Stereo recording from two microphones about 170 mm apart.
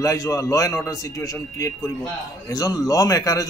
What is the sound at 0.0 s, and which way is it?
A man's voice, 20° left (ahead or behind).